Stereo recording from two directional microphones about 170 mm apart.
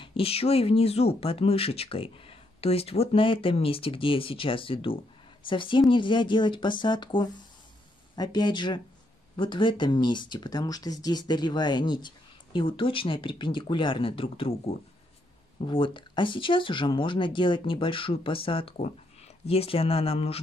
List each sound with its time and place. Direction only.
0.0 s speech: 30° left (ahead or behind)